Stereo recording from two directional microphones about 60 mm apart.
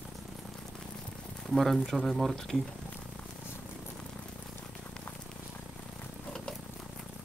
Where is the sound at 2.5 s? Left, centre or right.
Centre.